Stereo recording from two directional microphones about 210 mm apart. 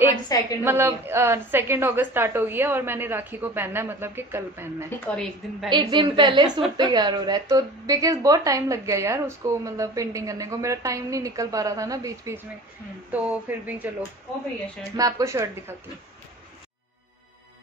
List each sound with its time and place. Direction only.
0.3 s a sound: 15° left (ahead or behind)
0.7 s a woman's voice: 10° right (ahead or behind)
4.8 s a woman's voice: 5° left (ahead or behind)
5.7 s a woman's voice: 20° right (ahead or behind)
15.0 s a woman's voice: 15° right (ahead or behind)